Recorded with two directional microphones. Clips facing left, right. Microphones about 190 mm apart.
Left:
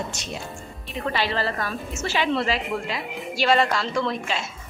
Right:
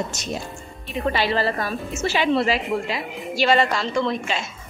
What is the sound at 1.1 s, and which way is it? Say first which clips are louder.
A woman's voice: right 2 dB; 15° right (ahead or behind).